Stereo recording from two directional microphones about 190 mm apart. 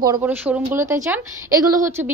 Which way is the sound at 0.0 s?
15° right (ahead or behind).